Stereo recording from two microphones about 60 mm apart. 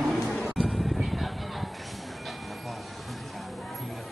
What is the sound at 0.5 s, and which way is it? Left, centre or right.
Music, centre.